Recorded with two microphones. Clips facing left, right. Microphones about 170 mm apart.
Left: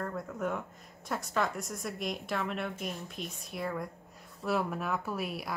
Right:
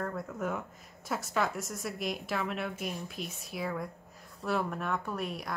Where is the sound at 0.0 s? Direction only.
Centre (ahead or behind).